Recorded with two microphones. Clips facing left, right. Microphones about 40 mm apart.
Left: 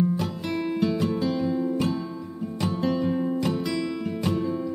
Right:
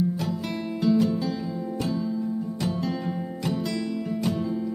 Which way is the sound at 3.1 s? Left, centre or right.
Centre.